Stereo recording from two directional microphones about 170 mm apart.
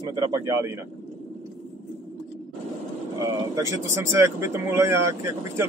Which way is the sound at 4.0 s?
15° right (ahead or behind).